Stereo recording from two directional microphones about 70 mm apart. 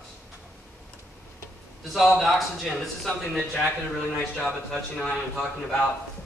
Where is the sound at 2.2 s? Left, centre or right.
Centre.